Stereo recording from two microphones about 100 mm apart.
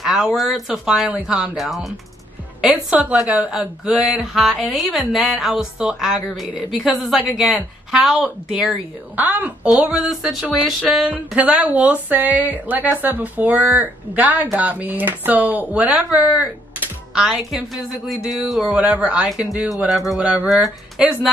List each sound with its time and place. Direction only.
0.0 s speech: centre (ahead or behind)
9.1 s a woman's voice: 15° right (ahead or behind); by 18.8 s centre (ahead or behind)
18.8 s speech: 10° right (ahead or behind)